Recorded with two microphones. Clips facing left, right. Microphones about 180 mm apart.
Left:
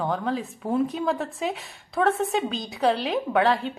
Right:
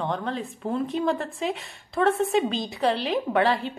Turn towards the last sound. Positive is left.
turn(degrees=0)  # may be behind; listen again after turning